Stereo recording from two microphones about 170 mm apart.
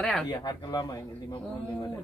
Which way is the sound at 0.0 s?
5° left (ahead or behind).